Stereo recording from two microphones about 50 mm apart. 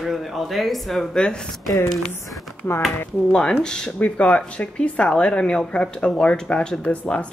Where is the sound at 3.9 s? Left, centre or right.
Left.